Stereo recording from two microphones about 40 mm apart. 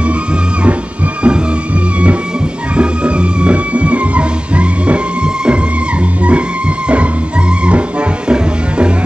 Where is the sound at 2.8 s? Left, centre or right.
Right.